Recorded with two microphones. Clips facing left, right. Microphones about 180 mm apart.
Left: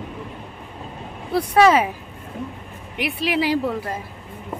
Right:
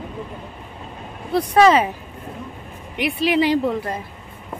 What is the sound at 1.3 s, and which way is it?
Speech, 5° left (ahead or behind).